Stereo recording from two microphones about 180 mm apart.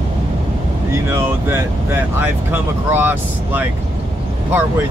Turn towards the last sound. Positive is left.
turn(degrees=-10)  # may be behind; listen again after turning